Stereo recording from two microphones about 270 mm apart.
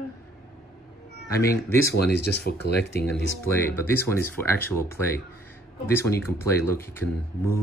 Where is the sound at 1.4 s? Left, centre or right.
Centre.